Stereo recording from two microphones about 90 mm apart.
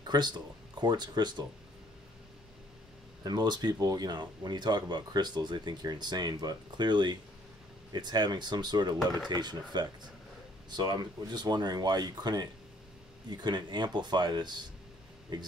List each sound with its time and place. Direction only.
0.0 s speech: 55° right (ahead or behind)
3.3 s speech: 50° right (ahead or behind)